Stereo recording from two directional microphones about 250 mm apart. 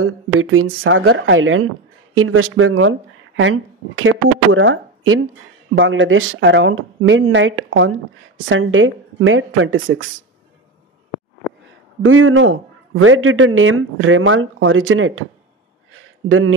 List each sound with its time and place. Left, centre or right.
0.0 s a man's voice: right
12.0 s a man's voice: right
15.9 s a sound: right